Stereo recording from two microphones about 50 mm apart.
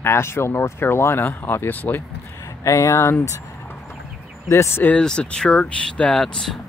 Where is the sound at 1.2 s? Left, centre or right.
Left.